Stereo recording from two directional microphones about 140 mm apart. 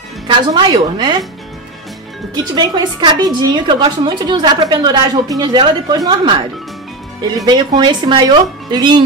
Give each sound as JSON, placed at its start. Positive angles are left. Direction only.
{"t": 0.5, "sound": "a woman's voice", "side_deg": -35}
{"t": 2.5, "sound": "a woman's voice", "side_deg": -30}
{"t": 7.4, "sound": "a woman's voice", "side_deg": -30}